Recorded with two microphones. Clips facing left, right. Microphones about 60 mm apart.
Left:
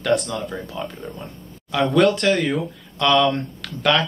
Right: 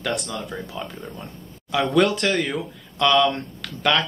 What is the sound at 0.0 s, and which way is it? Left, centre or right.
Speech, centre.